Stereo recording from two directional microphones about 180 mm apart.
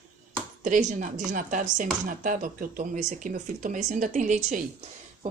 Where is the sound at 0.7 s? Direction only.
45° right (ahead or behind).